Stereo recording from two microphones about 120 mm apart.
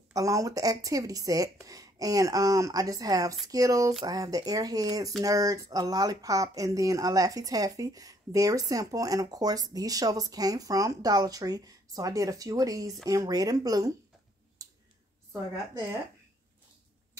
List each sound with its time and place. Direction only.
0.1 s speech: 30° right (ahead or behind)
14.6 s clicking: 30° right (ahead or behind)